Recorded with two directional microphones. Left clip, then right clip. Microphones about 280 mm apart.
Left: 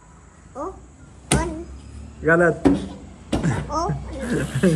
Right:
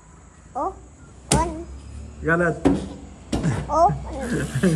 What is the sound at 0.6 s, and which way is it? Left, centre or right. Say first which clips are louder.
Speech: right 5 dB; right.